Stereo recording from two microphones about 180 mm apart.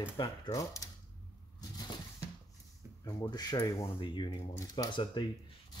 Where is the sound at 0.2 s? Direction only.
20° left (ahead or behind).